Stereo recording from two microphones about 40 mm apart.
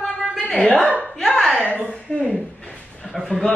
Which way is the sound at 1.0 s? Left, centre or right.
Centre.